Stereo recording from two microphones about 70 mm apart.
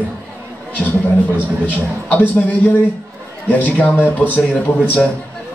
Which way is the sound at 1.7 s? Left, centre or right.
Left.